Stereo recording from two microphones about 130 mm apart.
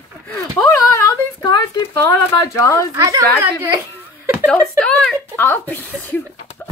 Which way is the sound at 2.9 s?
25° right (ahead or behind).